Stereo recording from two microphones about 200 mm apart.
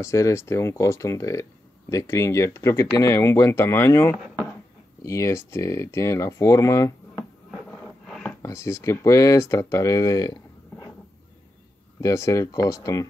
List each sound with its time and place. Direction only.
0.0 s speech: 15° left (ahead or behind)
8.1 s speech: 5° left (ahead or behind)
12.0 s speech: 15° left (ahead or behind)